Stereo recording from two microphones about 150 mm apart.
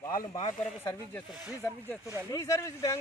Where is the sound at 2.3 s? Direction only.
20° left (ahead or behind).